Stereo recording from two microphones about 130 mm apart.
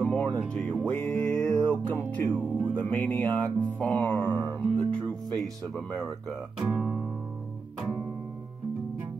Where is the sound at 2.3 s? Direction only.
15° right (ahead or behind).